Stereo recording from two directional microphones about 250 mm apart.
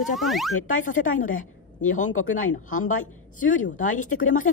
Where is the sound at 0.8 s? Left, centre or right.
Left.